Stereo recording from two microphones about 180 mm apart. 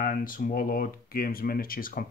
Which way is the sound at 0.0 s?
50° left (ahead or behind).